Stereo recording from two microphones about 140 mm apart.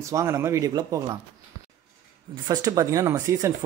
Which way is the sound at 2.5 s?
25° right (ahead or behind).